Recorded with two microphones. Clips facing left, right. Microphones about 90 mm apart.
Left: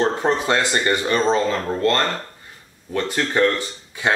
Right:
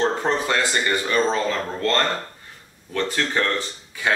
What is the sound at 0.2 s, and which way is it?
Speech, 25° left (ahead or behind).